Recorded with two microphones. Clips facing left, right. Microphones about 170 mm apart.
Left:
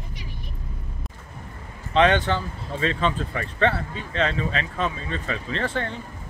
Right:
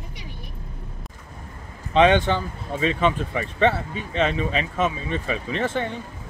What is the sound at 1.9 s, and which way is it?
Speech, 15° right (ahead or behind).